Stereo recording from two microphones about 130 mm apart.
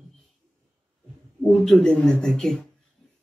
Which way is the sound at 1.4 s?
5° left (ahead or behind).